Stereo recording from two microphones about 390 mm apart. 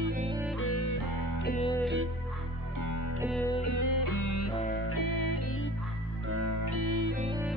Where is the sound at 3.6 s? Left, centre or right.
Left.